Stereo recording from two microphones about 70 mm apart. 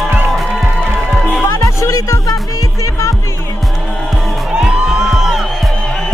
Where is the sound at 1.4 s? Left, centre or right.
Left.